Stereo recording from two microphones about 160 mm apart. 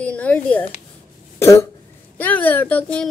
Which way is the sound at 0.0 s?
10° left (ahead or behind).